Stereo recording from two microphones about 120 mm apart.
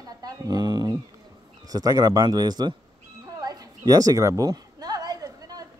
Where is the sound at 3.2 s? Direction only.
30° right (ahead or behind).